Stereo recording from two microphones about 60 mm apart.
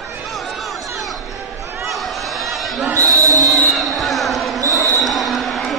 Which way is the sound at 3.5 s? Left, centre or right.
Centre.